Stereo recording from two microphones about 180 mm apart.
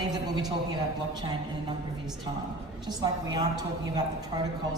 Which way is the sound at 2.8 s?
20° right (ahead or behind).